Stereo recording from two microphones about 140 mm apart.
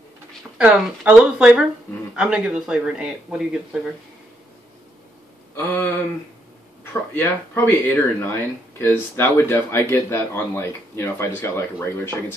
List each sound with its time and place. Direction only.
0.6 s speech: 10° right (ahead or behind)
5.6 s speech: 15° left (ahead or behind)